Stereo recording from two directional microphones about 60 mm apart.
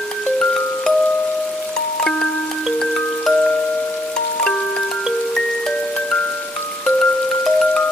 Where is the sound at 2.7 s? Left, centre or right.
Centre.